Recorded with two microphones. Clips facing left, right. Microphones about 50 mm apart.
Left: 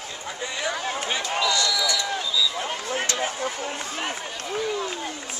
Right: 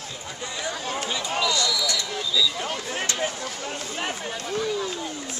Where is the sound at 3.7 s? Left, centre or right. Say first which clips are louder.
Even; centre.